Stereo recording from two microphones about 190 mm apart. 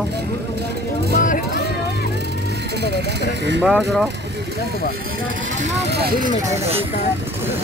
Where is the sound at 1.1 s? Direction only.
45° left (ahead or behind).